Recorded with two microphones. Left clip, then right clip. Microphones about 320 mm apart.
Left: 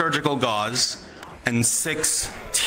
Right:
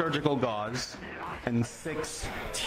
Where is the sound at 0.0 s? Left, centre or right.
Left.